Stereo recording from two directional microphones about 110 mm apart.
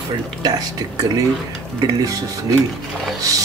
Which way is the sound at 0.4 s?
35° right (ahead or behind).